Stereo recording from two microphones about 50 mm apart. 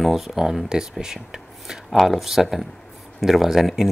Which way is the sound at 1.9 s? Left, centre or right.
Centre.